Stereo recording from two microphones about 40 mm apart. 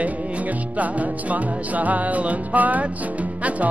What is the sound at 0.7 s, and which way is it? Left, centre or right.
Music, right.